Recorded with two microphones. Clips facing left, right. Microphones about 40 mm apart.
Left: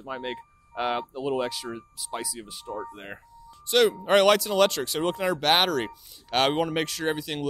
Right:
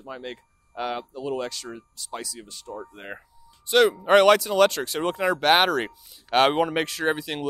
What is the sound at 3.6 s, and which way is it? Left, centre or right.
Speech, centre.